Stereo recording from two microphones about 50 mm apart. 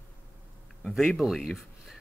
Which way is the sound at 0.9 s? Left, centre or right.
Centre.